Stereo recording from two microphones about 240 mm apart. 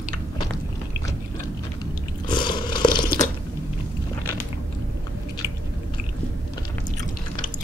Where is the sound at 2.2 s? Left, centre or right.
Centre.